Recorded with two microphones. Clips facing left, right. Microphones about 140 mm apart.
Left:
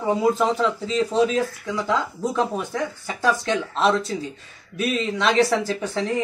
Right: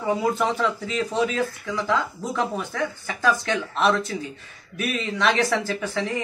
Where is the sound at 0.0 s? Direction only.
25° left (ahead or behind).